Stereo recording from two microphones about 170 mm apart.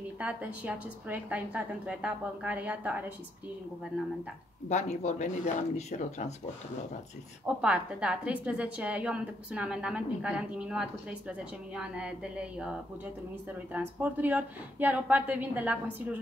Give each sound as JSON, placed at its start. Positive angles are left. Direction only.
{"t": 0.2, "sound": "a woman's voice", "side_deg": -10}
{"t": 4.6, "sound": "speech", "side_deg": 45}
{"t": 7.4, "sound": "a woman's voice", "side_deg": -5}
{"t": 13.7, "sound": "a woman's voice", "side_deg": -10}